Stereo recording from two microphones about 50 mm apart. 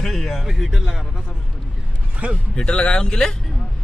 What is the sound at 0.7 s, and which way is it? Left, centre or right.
Speech, centre.